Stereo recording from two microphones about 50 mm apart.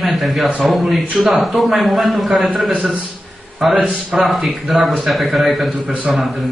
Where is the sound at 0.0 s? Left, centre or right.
Centre.